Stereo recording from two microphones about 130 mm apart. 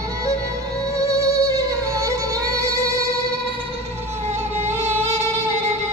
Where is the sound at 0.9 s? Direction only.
25° right (ahead or behind).